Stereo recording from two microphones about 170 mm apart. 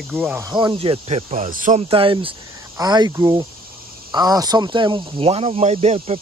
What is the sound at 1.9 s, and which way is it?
Speech, 30° right (ahead or behind).